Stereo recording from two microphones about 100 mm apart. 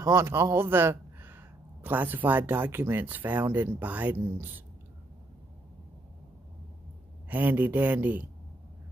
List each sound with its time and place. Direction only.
0.0 s a man's voice: 25° right (ahead or behind)
7.2 s speech: 15° right (ahead or behind)